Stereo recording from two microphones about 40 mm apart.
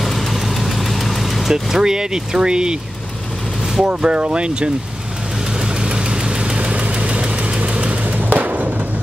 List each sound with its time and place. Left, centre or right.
0.0 s vehicle: centre
1.5 s speech: centre
3.8 s speech: right
5.9 s engine: right